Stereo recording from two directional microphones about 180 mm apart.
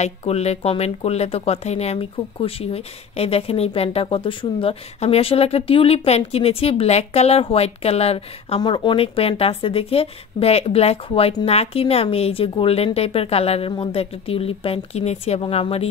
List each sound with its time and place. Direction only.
0.0 s speech: 35° left (ahead or behind)